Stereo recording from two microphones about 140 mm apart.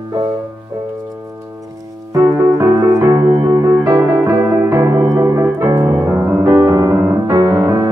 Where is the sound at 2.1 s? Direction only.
20° right (ahead or behind).